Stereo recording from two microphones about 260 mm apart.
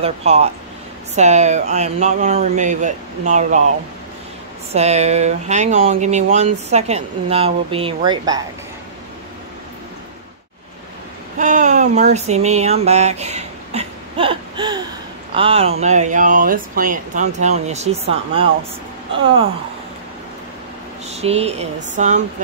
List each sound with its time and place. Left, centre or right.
0.0 s speech: right
4.7 s speech: right
11.3 s a sound: right
15.3 s speech: right
21.1 s speech: right